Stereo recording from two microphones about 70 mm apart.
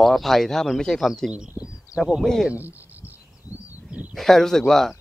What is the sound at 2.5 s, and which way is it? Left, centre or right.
Speech, right.